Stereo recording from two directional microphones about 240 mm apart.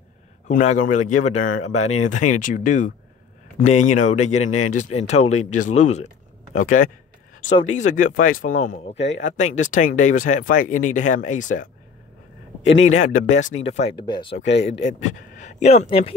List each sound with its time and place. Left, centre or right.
0.5 s a man's voice: left
8.9 s speech: left
9.4 s speech: left
12.6 s speech: left
12.9 s a man's voice: left
14.3 s speech: left
15.0 s a man's voice: left